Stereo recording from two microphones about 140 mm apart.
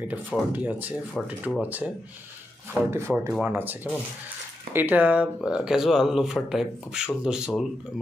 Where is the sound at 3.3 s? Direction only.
10° right (ahead or behind).